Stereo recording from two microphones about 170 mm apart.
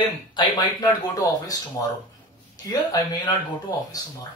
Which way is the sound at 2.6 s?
20° left (ahead or behind).